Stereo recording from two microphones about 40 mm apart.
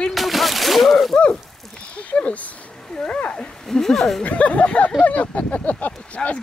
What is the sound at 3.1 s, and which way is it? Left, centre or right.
Speech, left.